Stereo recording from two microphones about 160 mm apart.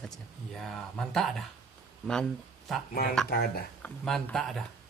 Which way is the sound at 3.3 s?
70° left (ahead or behind).